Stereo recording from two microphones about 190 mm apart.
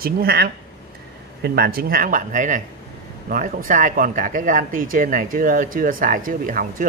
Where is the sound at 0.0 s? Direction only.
55° right (ahead or behind).